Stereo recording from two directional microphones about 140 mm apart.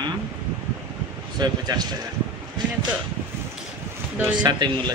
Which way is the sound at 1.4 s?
30° right (ahead or behind).